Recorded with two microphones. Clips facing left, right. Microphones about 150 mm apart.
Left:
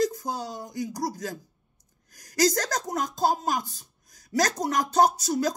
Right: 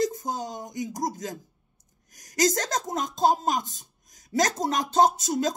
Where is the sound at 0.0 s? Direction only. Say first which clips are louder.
Even; 20° right (ahead or behind).